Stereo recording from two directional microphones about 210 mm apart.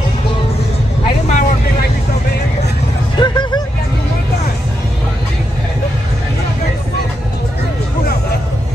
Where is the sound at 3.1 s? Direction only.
20° left (ahead or behind).